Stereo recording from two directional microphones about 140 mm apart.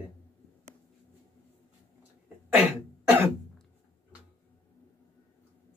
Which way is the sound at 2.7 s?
15° right (ahead or behind).